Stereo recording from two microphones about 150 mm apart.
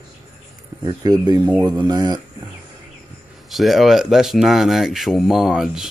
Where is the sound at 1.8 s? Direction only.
30° right (ahead or behind).